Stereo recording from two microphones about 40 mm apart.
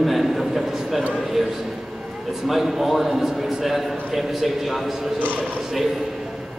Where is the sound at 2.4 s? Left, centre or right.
Centre.